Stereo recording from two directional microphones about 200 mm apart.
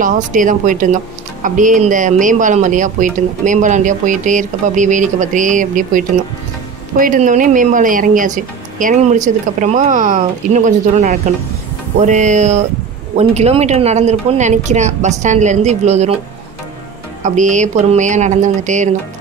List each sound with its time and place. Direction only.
0.0 s speech: 40° right (ahead or behind)
17.2 s speech: 40° right (ahead or behind)